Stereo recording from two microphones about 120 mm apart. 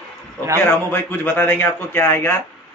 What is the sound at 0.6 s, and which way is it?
A man's voice, 20° left (ahead or behind).